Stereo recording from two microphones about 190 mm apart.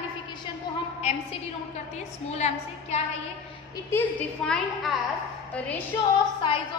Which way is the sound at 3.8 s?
10° left (ahead or behind).